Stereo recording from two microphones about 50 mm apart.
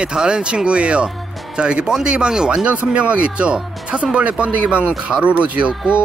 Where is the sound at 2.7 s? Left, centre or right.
Right.